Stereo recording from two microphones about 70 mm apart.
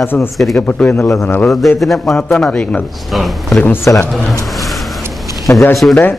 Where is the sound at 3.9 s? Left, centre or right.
Left.